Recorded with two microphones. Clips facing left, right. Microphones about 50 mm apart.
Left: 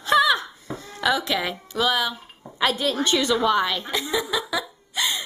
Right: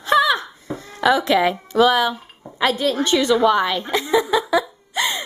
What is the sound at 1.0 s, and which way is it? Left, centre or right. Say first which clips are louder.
A woman's voice: right 7 dB; right.